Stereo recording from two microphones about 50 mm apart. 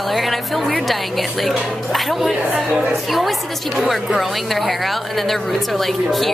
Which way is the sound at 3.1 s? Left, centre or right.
Centre.